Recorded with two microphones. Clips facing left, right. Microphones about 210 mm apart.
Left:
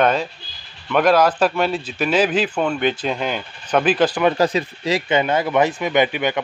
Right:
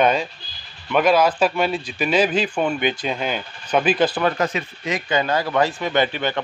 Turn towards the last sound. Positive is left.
turn(degrees=15)  # may be behind; listen again after turning